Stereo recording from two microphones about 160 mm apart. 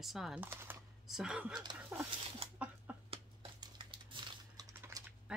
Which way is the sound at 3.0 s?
30° right (ahead or behind).